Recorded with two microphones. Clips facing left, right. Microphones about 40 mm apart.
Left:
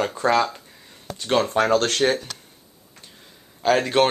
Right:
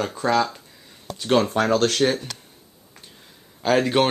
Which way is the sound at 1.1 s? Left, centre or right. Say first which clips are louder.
Right 1 dB; centre.